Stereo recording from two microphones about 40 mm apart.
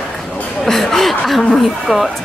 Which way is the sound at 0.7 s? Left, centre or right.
Centre.